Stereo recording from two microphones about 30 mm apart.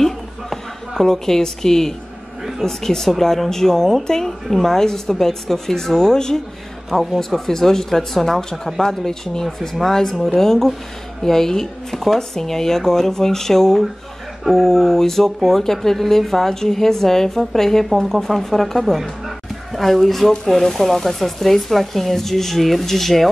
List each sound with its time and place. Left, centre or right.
0.0 s a sound: centre
1.0 s speech: centre
3.0 s speech: centre
6.9 s speech: centre
18.9 s music: centre
19.8 s speech: centre